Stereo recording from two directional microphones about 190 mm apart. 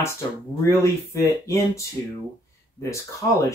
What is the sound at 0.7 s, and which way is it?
Speech, 15° left (ahead or behind).